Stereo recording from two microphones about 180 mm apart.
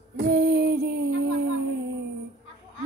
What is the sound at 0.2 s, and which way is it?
Female singing, 65° right (ahead or behind).